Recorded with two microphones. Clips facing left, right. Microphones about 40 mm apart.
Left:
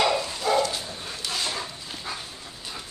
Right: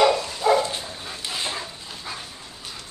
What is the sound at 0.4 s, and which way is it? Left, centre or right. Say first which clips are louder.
Dog: right 4 dB; right.